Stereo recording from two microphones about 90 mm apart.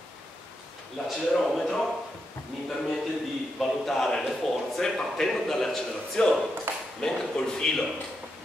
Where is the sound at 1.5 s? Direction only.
5° left (ahead or behind).